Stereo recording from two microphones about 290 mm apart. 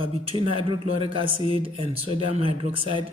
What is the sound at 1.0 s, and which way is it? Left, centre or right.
Speech, centre.